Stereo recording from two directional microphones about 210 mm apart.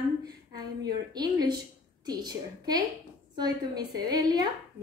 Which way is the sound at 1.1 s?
20° right (ahead or behind).